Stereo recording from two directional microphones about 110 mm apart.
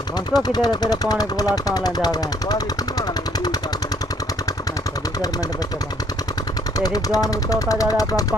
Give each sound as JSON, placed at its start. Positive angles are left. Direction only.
{"t": 0.3, "sound": "speech", "side_deg": 40}
{"t": 6.8, "sound": "speech", "side_deg": 35}